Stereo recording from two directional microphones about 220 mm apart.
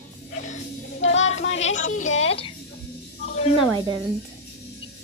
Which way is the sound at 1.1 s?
30° left (ahead or behind).